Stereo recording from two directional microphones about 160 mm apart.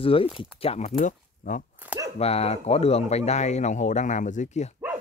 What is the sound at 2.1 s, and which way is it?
Speech, 40° left (ahead or behind).